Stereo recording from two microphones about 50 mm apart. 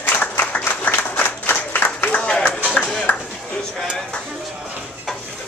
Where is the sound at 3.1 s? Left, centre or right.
Left.